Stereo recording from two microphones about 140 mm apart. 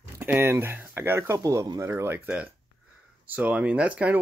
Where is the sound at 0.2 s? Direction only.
15° right (ahead or behind).